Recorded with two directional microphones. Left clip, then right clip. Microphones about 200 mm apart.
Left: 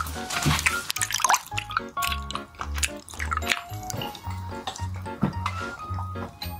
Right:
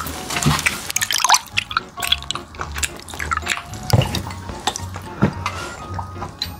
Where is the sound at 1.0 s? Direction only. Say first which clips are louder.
Right 8 dB; centre (ahead or behind).